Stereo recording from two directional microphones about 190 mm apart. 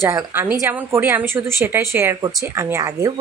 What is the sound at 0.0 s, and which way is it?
Speech, 10° right (ahead or behind).